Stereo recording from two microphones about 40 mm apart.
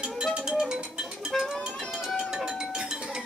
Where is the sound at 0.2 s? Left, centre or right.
Centre.